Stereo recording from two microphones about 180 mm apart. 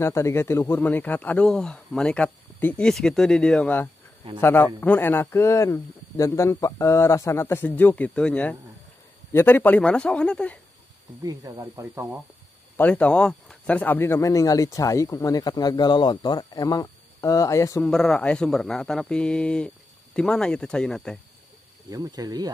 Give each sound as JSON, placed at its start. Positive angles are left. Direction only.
{"t": 0.0, "sound": "speech", "side_deg": 15}
{"t": 11.2, "sound": "speech", "side_deg": -20}
{"t": 12.7, "sound": "speech", "side_deg": 5}
{"t": 17.8, "sound": "speech", "side_deg": 5}
{"t": 21.8, "sound": "speech", "side_deg": -20}